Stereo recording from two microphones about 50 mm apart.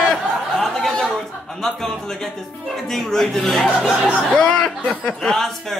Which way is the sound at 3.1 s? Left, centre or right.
Centre.